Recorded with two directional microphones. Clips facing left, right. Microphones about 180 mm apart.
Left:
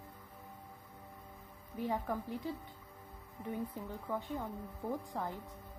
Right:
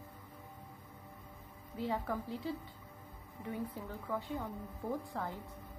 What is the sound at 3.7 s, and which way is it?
Speech, 20° left (ahead or behind).